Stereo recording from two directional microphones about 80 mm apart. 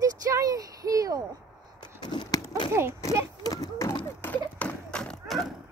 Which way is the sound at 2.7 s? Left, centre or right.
Right.